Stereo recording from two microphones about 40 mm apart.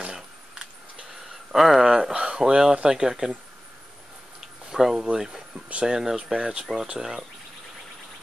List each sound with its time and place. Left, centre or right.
1.5 s speech: centre
4.7 s speech: centre